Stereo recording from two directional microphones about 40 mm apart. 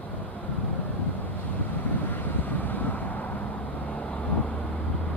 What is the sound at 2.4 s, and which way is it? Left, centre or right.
Vehicle, left.